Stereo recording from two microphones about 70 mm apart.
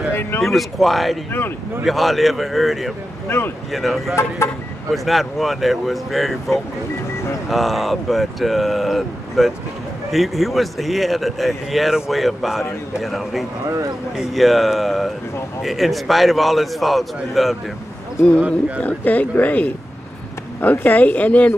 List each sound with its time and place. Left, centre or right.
0.1 s a sound: left
0.4 s speech: centre
3.3 s speech: left
3.7 s speech: centre
4.1 s speech: left
4.9 s speech: centre
7.4 s speech: centre
18.8 s speech: left